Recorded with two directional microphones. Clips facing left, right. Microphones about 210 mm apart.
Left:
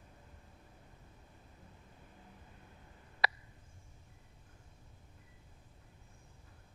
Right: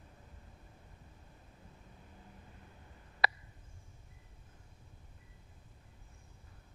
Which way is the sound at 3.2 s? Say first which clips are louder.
Right 2 dB; 50° right (ahead or behind).